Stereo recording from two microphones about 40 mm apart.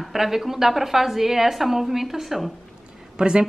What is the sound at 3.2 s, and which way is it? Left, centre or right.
Speech, right.